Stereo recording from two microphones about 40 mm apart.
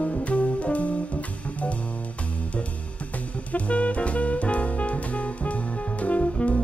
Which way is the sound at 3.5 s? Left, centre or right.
Left.